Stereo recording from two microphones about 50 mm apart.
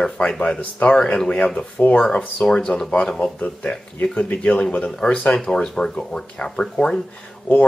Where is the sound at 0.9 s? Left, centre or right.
Centre.